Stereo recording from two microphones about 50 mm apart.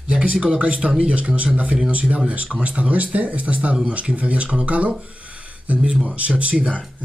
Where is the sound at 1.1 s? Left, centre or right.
Right.